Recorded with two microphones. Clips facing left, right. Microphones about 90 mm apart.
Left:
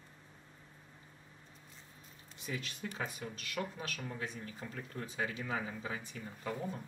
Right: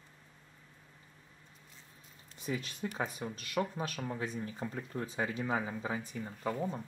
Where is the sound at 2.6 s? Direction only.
30° right (ahead or behind).